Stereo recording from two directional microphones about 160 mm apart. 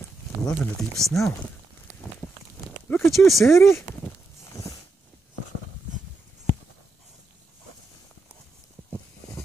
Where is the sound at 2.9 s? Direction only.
15° left (ahead or behind).